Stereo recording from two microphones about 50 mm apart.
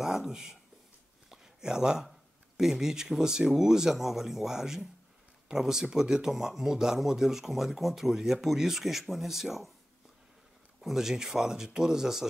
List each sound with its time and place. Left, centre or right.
0.0 s a sound: centre
2.0 s speech: centre
10.8 s speech: centre